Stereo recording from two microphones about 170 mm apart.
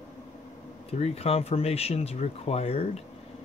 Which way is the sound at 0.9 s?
35° left (ahead or behind).